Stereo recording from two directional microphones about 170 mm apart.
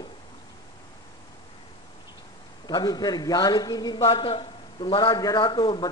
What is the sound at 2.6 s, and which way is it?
Speech, 25° left (ahead or behind).